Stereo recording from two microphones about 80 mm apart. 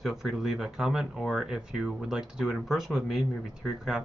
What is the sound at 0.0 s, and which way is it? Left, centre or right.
Speech, centre.